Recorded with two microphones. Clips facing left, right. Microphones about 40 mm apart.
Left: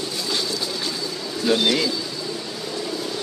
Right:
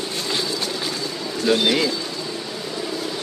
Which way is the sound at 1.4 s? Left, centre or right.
Centre.